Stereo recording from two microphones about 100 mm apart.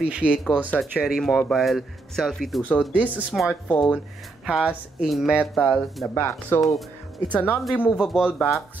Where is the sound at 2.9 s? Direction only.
15° right (ahead or behind).